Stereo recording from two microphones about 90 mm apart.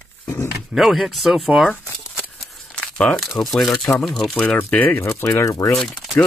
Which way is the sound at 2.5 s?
10° left (ahead or behind).